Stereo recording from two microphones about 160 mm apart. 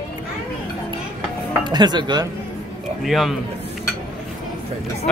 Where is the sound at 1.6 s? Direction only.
25° right (ahead or behind).